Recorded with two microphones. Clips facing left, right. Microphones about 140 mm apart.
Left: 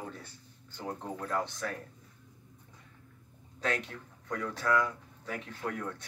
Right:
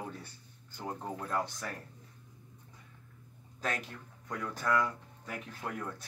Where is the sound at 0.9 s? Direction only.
5° right (ahead or behind).